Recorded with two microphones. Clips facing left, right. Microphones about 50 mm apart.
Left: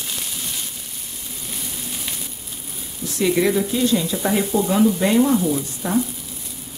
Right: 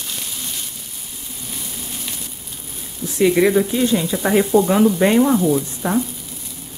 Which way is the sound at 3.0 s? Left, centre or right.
Centre.